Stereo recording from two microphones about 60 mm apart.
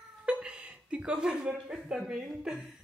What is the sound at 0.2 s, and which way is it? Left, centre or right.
Chuckle, centre.